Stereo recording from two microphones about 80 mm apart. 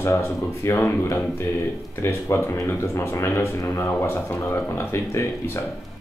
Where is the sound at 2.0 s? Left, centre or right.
Left.